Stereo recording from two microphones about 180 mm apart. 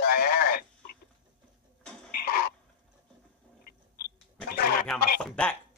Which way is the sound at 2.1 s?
60° left (ahead or behind).